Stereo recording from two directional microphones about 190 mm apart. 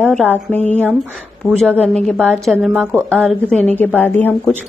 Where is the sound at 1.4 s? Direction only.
15° left (ahead or behind).